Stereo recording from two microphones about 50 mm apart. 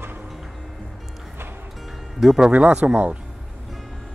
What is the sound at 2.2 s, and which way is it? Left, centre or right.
Speech, centre.